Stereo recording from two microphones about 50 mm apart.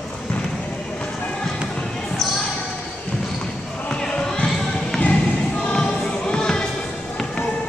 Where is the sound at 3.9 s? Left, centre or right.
Centre.